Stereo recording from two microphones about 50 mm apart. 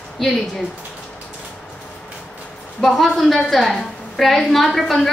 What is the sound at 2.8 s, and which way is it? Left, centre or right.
A woman's voice, centre.